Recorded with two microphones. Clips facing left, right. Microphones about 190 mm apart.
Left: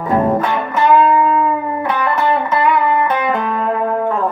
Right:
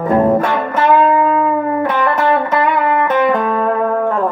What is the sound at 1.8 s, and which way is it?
Music, 35° right (ahead or behind).